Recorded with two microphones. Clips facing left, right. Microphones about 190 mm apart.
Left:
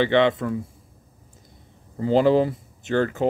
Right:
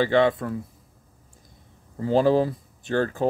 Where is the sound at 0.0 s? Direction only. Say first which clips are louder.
Left 1 dB; 25° left (ahead or behind).